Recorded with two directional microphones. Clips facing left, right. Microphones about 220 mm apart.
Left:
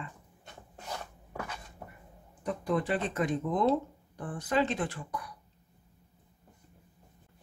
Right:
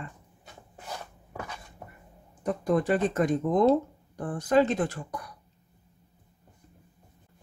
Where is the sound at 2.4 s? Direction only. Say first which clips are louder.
Right 5 dB; 45° right (ahead or behind).